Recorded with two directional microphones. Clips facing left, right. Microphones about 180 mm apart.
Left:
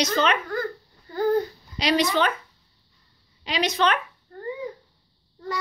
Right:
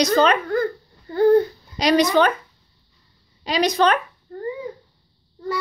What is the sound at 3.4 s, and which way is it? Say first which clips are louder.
Speech: right 5 dB; 40° right (ahead or behind).